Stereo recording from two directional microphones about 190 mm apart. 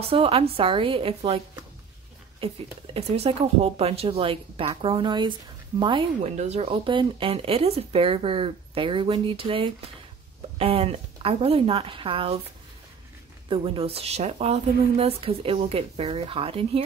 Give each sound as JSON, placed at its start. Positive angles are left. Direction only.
{"t": 0.0, "sound": "speech", "side_deg": -30}
{"t": 2.4, "sound": "a woman's voice", "side_deg": -30}
{"t": 13.5, "sound": "a woman's voice", "side_deg": -30}